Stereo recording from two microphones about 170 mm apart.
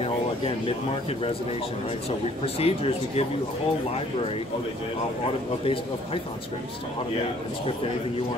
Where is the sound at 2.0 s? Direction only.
35° left (ahead or behind).